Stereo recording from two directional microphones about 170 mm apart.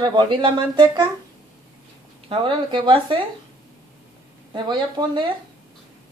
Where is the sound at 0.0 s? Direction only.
30° right (ahead or behind).